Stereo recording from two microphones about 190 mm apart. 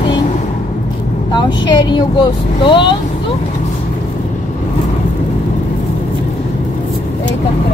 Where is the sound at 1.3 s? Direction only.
25° left (ahead or behind).